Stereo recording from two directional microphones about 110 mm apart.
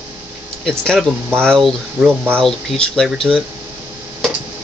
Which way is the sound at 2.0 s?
15° right (ahead or behind).